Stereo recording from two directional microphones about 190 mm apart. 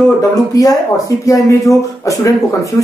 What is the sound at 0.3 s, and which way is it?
Speech, 20° left (ahead or behind).